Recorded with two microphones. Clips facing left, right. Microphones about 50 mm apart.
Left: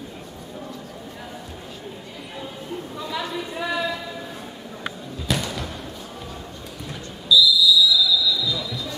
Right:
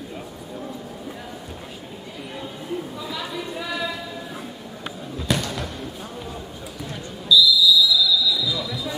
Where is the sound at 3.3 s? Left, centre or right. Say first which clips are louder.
Left 2 dB; centre.